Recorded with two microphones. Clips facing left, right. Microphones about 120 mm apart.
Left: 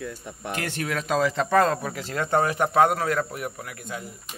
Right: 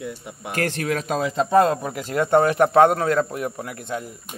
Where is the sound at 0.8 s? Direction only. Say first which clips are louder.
Right 1 dB; 25° right (ahead or behind).